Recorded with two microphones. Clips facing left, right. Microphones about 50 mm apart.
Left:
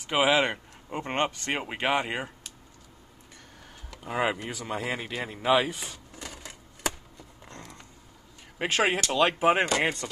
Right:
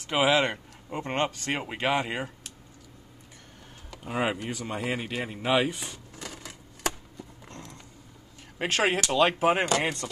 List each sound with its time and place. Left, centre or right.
0.0 s speech: centre
1.6 s speech: centre
3.9 s speech: centre
8.5 s speech: centre